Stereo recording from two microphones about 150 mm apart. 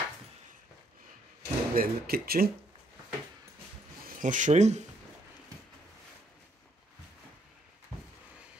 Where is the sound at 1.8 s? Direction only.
85° right.